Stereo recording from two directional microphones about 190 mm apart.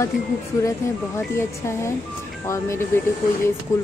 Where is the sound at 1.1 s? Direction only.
15° left (ahead or behind).